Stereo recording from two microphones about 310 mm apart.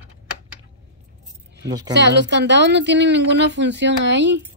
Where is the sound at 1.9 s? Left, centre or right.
Right.